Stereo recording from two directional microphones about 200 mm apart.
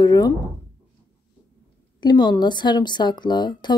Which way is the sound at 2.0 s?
20° left (ahead or behind).